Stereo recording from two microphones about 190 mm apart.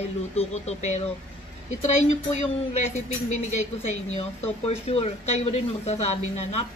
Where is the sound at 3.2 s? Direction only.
35° left (ahead or behind).